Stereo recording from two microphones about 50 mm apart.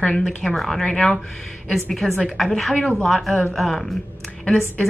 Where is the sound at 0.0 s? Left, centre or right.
Left.